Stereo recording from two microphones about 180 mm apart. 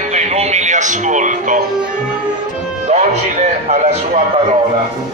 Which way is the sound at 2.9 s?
40° right (ahead or behind).